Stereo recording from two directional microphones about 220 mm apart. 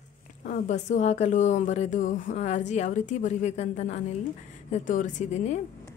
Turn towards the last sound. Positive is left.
turn(degrees=30)  # may be behind; listen again after turning